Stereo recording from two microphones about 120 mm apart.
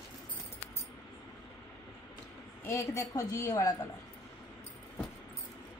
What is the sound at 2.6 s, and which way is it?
A woman's voice, 25° left (ahead or behind).